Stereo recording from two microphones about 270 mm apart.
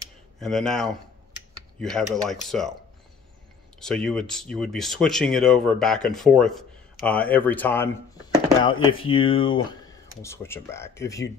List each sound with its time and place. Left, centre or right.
0.4 s speech: centre
3.8 s speech: centre